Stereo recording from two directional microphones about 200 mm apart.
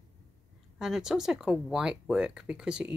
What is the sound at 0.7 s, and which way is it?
Speech, 5° right (ahead or behind).